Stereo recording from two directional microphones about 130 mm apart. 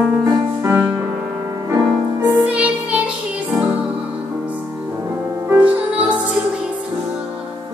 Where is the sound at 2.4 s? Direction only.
10° right (ahead or behind).